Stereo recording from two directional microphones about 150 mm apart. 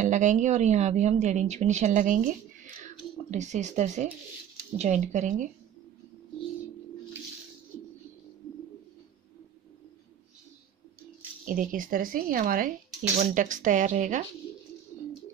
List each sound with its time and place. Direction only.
0.0 s a woman's voice: 55° right (ahead or behind)
11.4 s speech: 65° right (ahead or behind)